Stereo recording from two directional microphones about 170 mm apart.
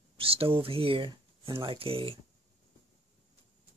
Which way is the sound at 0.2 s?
35° right (ahead or behind).